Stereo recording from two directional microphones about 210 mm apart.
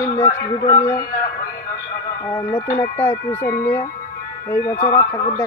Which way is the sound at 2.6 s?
15° left (ahead or behind).